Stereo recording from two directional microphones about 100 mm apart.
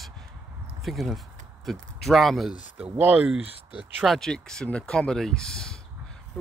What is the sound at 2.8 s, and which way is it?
Speech, 15° right (ahead or behind).